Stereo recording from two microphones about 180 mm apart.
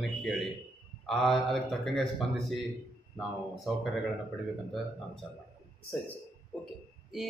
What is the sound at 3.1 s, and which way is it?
Speech, centre (ahead or behind).